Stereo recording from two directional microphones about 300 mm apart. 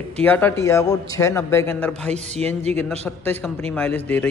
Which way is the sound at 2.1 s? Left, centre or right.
Right.